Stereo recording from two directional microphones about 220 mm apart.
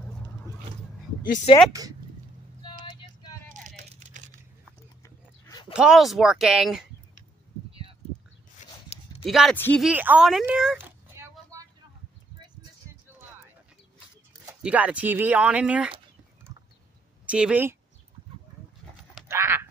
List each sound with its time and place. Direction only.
1.2 s speech: 40° left (ahead or behind)
1.7 s speech: 15° right (ahead or behind)
2.8 s vehicle: 20° left (ahead or behind)
3.4 s a sound: 35° right (ahead or behind)
5.0 s a sound: 15° left (ahead or behind)
5.7 s speech: 5° right (ahead or behind)
8.5 s a sound: 30° left (ahead or behind)
9.2 s speech: centre (ahead or behind)
9.8 s a sound: 5° right (ahead or behind)
14.6 s speech: 5° right (ahead or behind)
17.3 s speech: 5° right (ahead or behind)
19.2 s frog: 10° right (ahead or behind)